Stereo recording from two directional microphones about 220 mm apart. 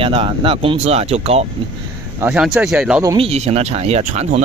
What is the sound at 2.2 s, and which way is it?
Speech, 5° right (ahead or behind).